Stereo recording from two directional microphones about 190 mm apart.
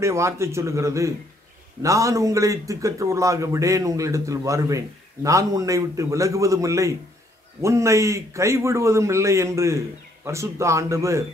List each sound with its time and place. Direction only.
0.0 s a man's voice: 15° right (ahead or behind)